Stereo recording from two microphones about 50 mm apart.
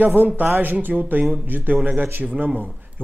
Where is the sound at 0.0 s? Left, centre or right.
Right.